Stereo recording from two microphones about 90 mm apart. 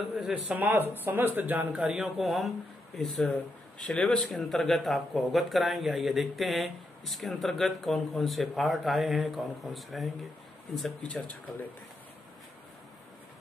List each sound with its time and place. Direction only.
0.3 s a man's voice: 15° right (ahead or behind); by 11.1 s 5° left (ahead or behind)
11.1 s speech: 15° left (ahead or behind)